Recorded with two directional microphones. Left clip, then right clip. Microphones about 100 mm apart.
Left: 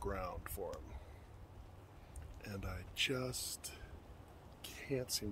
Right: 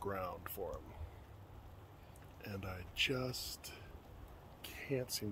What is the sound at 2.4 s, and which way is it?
Speech, 15° right (ahead or behind).